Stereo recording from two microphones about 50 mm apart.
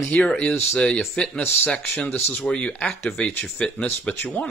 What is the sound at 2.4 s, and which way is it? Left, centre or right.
Speech, left.